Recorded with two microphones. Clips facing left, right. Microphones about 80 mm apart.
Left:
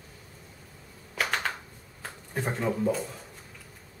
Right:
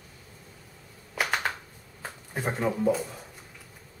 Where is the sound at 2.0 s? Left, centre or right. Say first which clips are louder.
Even; centre.